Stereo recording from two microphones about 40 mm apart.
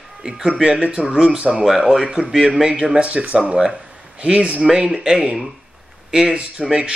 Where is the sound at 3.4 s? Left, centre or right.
Right.